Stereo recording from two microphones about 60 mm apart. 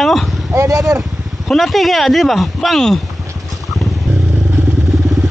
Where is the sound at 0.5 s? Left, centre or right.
Right.